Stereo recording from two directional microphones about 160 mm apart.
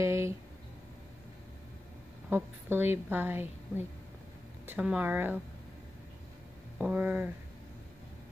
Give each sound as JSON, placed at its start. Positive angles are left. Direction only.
{"t": 0.0, "sound": "a sound", "side_deg": -15}
{"t": 2.2, "sound": "a woman's voice", "side_deg": -15}
{"t": 6.8, "sound": "a woman's voice", "side_deg": -10}